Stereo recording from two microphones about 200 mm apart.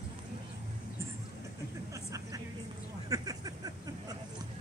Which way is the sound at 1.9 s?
15° right (ahead or behind).